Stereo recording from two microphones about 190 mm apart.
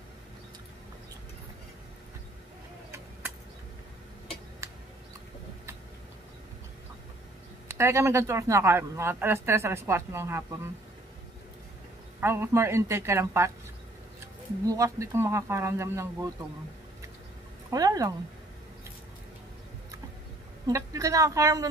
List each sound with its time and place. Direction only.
7.6 s speech: 15° right (ahead or behind)
12.2 s speech: 15° right (ahead or behind)
17.6 s speech: 20° right (ahead or behind)
20.6 s speech: 15° right (ahead or behind)